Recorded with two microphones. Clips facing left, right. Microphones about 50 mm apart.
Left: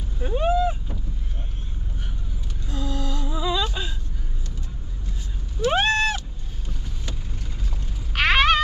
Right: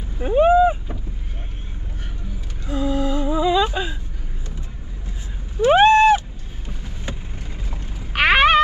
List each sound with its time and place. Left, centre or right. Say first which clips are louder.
0.2 s boat: right 8 dB; right
2.7 s music: right 8 dB; centre
5.6 s a sound: right 9 dB; centre
8.1 s cat: right 4 dB; centre